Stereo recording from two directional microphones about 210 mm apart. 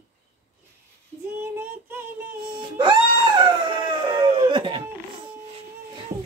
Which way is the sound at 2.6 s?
20° right (ahead or behind).